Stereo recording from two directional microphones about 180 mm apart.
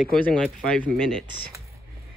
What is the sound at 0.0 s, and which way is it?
Speech, 5° left (ahead or behind).